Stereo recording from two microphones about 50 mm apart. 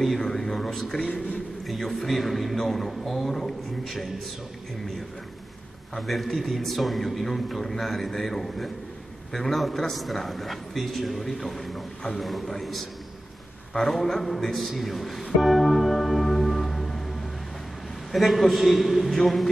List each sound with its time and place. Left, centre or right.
0.0 s speech: centre
1.0 s a man's voice: left
1.7 s a man's voice: centre
5.9 s a man's voice: centre
14.7 s music: centre
18.1 s a man's voice: centre